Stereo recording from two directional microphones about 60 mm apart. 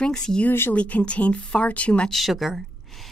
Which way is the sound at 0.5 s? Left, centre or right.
Left.